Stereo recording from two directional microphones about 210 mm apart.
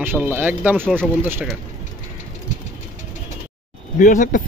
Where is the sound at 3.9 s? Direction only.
40° left (ahead or behind).